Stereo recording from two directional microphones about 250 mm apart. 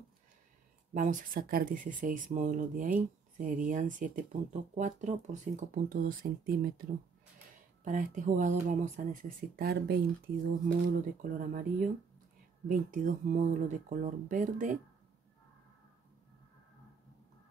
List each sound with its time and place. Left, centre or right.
0.9 s speech: right
7.8 s speech: right
11.3 s speech: right